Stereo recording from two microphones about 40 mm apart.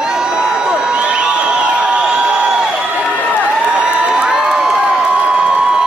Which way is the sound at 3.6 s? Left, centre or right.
Right.